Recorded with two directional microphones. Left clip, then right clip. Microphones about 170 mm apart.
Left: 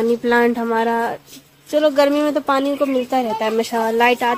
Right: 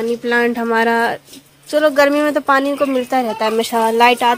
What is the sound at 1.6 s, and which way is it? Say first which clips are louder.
A woman's voice: right 2 dB; centre (ahead or behind).